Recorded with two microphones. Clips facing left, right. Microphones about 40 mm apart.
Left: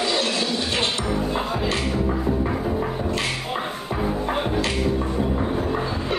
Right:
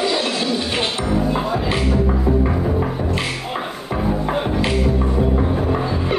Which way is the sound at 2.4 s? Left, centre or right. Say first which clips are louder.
Right 4 dB; centre.